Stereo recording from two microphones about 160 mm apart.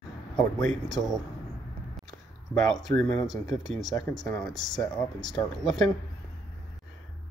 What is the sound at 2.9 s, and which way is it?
Speech, 75° right (ahead or behind).